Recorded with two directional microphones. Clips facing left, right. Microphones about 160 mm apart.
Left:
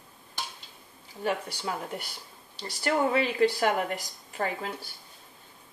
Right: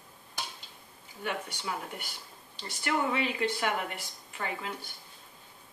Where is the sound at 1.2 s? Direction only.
35° left (ahead or behind).